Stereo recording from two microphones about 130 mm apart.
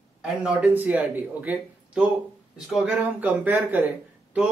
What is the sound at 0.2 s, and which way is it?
A man's voice, 5° right (ahead or behind).